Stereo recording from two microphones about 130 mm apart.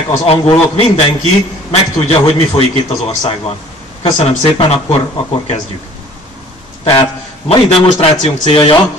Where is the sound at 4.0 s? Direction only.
45° left (ahead or behind).